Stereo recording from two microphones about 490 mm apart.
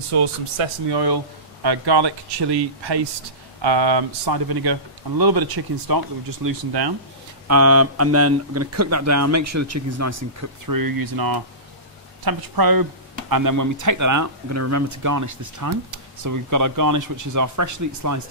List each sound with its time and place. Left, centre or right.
0.1 s speech: right
0.9 s speech: right
7.4 s speech: right